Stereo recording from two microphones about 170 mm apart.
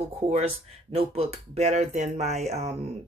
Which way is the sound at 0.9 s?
35° right (ahead or behind).